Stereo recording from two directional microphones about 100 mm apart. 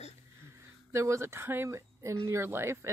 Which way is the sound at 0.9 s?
30° right (ahead or behind).